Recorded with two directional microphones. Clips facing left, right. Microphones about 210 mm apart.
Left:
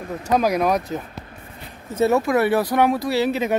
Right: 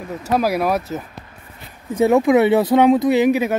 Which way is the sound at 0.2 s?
5° right (ahead or behind).